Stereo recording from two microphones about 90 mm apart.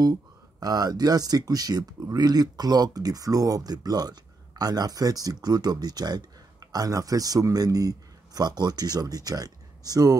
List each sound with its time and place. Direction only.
0.0 s speech: 45° right (ahead or behind)